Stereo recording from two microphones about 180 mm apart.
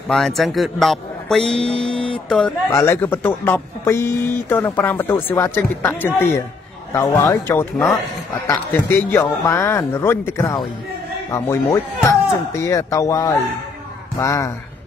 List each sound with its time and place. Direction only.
0.1 s a man's voice: centre (ahead or behind)
2.7 s speech: 15° left (ahead or behind)
8.7 s speech: 10° left (ahead or behind)